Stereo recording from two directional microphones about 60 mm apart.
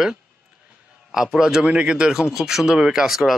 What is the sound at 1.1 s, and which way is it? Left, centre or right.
A man's voice, centre.